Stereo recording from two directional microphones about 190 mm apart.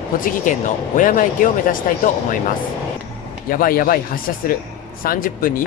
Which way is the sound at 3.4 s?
50° left (ahead or behind).